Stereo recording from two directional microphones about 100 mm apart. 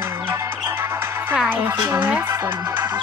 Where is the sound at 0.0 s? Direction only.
20° right (ahead or behind).